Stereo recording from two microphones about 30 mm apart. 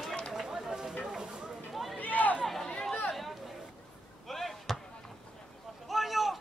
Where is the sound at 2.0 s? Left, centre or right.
Left.